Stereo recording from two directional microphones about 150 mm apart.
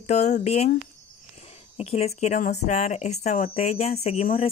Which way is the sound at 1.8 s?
45° left (ahead or behind).